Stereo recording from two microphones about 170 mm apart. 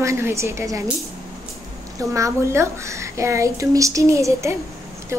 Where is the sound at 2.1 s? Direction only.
15° right (ahead or behind).